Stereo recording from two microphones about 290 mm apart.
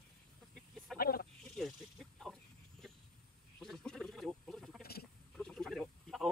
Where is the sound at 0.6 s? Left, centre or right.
Centre.